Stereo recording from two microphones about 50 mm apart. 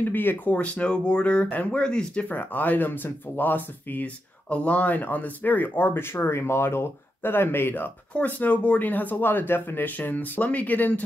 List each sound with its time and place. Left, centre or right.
0.0 s speech: left
0.5 s speech: left
1.8 s speech: centre
2.2 s speech: left
8.1 s speech: left